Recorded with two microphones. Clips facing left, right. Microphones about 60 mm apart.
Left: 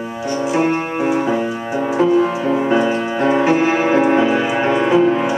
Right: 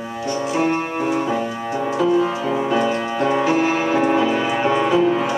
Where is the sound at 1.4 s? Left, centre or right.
Left.